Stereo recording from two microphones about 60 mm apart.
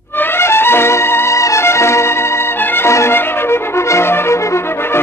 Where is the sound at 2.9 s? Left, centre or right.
Left.